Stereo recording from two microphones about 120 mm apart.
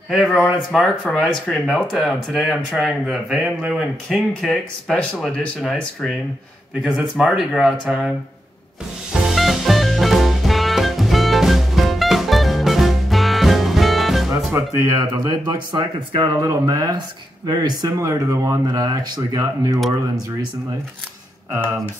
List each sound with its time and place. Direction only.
0.5 s speech: centre (ahead or behind)
9.2 s music: centre (ahead or behind)
14.5 s speech: 30° right (ahead or behind)